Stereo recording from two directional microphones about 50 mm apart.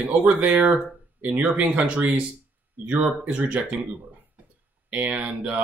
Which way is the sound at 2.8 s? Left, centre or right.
Right.